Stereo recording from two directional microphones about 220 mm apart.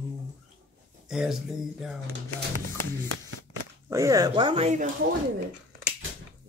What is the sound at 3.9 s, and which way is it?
Speech, 15° right (ahead or behind).